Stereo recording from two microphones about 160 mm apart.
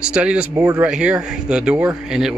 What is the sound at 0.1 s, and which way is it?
Speech, 5° right (ahead or behind).